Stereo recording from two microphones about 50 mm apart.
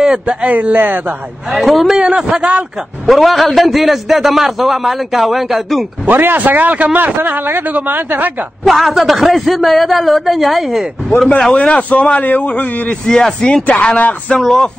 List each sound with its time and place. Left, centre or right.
0.0 s speech: centre
0.5 s a man's voice: right
1.5 s a man's voice: centre
2.0 s a man's voice: centre
3.1 s a man's voice: centre
6.0 s a man's voice: right
7.2 s a man's voice: right
8.6 s a man's voice: centre
11.1 s a man's voice: left
13.1 s speech: centre
13.7 s speech: left
14.4 s speech: centre